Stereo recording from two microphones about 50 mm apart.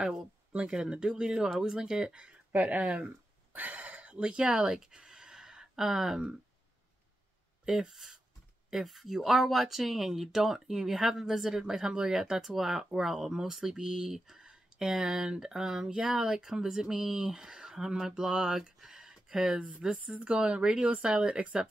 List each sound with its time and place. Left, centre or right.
0.7 s speech: centre
2.5 s speech: right
3.5 s a sound: right; by 6.2 s centre
7.6 s speech: centre
20.2 s speech: right